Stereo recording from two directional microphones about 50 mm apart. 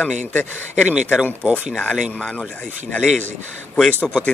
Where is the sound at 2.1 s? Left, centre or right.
Left.